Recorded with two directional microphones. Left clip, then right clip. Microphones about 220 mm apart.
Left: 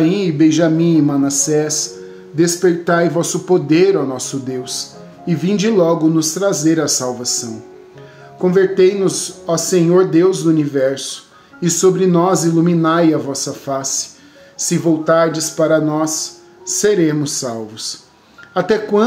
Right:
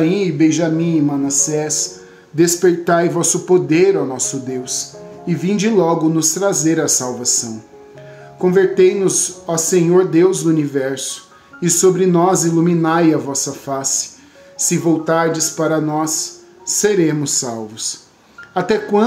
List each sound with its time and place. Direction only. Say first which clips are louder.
0.0 s speech: left 1 dB; 5° left (ahead or behind)
2.3 s speech: right 1 dB; 10° right (ahead or behind)